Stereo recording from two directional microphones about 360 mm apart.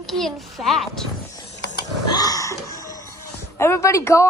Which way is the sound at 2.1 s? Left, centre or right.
Centre.